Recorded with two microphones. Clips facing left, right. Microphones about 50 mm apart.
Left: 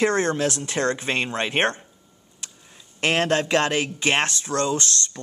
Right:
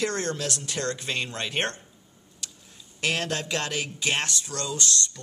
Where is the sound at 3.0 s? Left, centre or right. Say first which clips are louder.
Left 7 dB; left.